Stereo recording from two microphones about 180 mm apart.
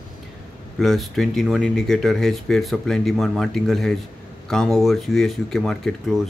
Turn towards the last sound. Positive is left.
turn(degrees=5)  # may be behind; listen again after turning